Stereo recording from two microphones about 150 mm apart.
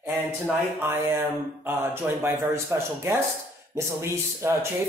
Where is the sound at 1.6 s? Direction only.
15° right (ahead or behind).